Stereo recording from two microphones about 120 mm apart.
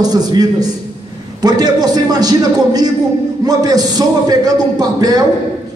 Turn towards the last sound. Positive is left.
turn(degrees=-35)  # may be behind; listen again after turning